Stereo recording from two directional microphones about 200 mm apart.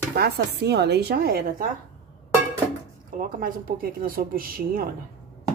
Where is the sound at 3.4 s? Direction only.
45° right (ahead or behind).